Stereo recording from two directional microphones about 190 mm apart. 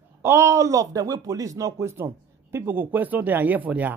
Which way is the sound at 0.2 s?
15° right (ahead or behind).